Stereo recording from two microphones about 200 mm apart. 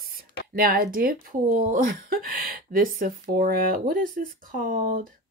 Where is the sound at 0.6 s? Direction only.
45° right (ahead or behind).